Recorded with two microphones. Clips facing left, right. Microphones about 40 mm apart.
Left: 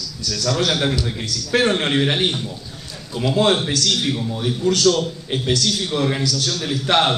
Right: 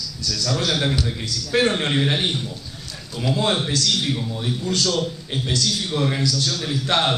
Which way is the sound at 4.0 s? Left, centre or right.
Centre.